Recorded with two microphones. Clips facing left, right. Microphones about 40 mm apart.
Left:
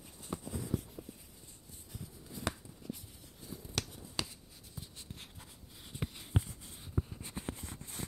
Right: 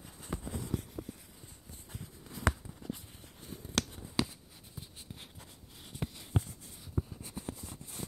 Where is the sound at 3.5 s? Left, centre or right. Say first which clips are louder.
Right 5 dB; right.